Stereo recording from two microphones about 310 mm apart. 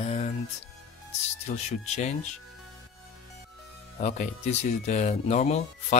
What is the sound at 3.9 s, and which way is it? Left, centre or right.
Speech, left.